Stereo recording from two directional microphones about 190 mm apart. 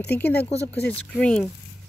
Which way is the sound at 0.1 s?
60° left (ahead or behind).